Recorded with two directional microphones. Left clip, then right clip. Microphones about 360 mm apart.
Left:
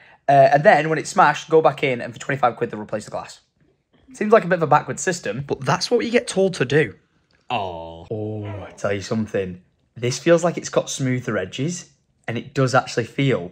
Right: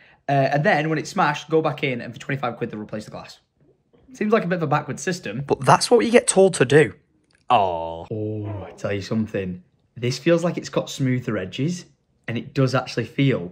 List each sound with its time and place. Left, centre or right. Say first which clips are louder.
0.0 s speech: left 8 dB; centre